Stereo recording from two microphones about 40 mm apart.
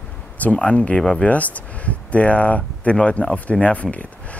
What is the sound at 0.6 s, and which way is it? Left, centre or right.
Speech, left.